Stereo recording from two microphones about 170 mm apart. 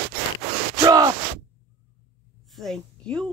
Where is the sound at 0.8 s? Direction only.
20° right (ahead or behind).